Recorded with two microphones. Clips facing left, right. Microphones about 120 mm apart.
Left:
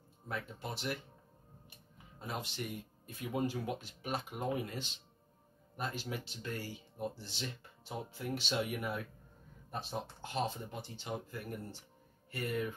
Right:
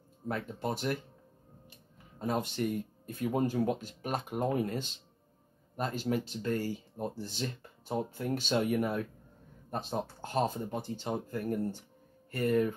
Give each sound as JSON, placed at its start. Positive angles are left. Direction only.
{"t": 0.3, "sound": "speech", "side_deg": -45}
{"t": 2.1, "sound": "speech", "side_deg": -45}